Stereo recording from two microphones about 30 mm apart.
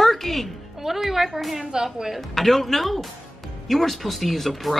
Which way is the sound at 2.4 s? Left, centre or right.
Centre.